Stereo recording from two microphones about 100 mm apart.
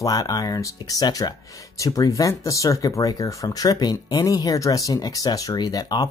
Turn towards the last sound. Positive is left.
turn(degrees=40)  # may be behind; listen again after turning